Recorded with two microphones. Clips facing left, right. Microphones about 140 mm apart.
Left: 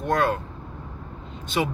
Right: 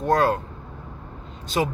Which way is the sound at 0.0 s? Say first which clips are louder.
Right 3 dB; 35° right (ahead or behind).